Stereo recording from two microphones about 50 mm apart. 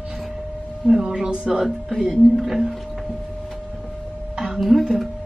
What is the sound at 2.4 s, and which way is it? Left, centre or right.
Speech, centre.